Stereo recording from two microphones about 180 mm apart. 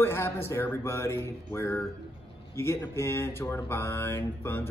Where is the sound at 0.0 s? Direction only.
15° left (ahead or behind).